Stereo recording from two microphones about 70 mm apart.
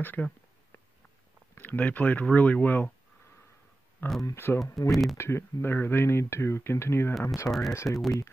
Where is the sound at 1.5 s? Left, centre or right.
Left.